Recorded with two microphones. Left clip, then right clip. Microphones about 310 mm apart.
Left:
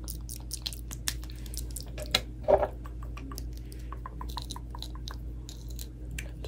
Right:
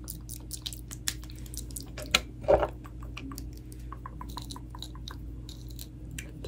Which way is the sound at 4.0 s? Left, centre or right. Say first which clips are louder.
Left 2 dB; centre.